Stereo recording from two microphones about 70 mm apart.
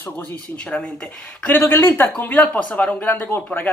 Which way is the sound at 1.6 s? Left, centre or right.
Left.